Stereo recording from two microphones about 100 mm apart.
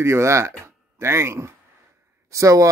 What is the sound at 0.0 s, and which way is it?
Speech, 30° right (ahead or behind).